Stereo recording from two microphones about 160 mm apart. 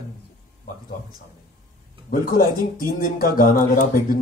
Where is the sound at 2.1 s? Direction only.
60° left (ahead or behind).